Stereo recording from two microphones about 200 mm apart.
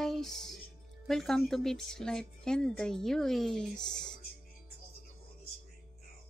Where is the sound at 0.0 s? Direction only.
Centre (ahead or behind).